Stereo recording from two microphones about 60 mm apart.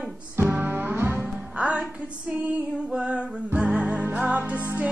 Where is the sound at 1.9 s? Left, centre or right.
Centre.